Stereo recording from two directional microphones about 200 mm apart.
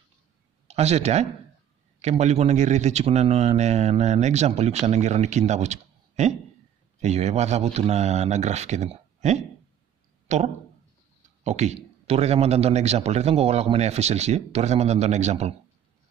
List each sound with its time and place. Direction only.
0.7 s a man's voice: 30° right (ahead or behind)